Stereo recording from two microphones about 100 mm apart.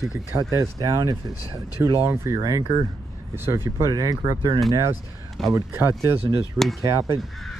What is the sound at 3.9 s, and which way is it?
Speech, 40° right (ahead or behind).